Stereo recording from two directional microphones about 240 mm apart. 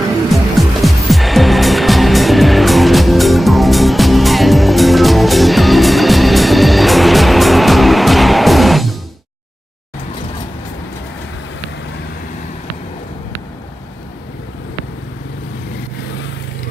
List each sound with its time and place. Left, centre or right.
0.3 s music: centre